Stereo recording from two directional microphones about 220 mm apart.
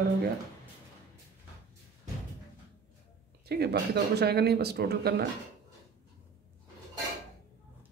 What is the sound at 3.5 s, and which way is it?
Speech, 45° right (ahead or behind).